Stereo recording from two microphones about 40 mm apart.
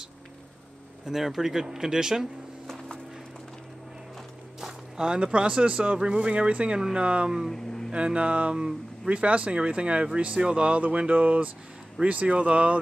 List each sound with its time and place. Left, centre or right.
1.0 s speech: centre
2.6 s a sound: centre
4.6 s speech: centre; by 12.7 s right